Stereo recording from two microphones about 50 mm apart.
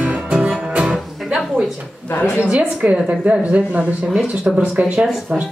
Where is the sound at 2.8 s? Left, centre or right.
Right.